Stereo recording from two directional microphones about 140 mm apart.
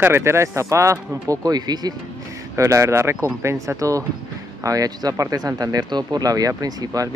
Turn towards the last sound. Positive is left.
turn(degrees=-25)  # may be behind; listen again after turning